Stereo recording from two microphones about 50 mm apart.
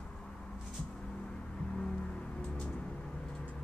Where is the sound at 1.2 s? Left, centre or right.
Centre.